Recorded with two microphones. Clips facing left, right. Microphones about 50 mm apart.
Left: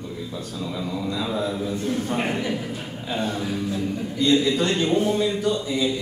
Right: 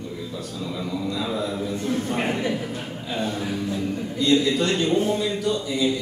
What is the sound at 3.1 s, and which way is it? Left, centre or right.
A man's voice, left.